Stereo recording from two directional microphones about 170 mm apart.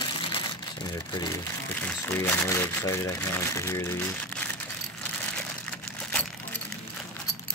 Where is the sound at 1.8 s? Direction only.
10° left (ahead or behind).